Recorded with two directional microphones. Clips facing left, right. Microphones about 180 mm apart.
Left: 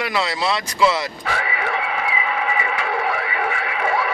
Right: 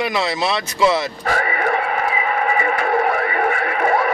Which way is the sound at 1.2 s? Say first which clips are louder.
Right 5 dB; 45° right (ahead or behind).